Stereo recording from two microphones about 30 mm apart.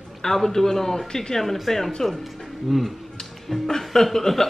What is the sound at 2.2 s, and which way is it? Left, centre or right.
Speech, centre.